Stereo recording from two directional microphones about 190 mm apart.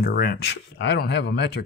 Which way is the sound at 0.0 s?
55° left (ahead or behind).